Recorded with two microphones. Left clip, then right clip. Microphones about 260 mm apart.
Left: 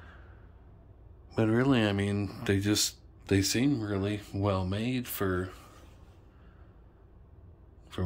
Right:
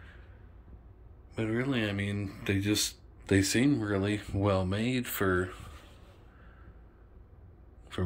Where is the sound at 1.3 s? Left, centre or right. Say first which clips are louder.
Left 5 dB; left; by 5.5 s centre.